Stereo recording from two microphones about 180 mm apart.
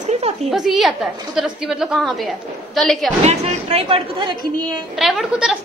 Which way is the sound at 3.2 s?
35° right (ahead or behind).